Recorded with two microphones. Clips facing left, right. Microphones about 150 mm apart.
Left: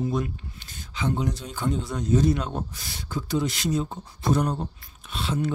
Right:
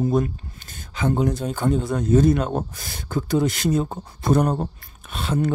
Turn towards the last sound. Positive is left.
turn(degrees=-50)  # may be behind; listen again after turning